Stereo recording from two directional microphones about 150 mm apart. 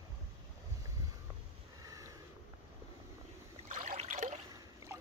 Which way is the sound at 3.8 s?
50° right (ahead or behind).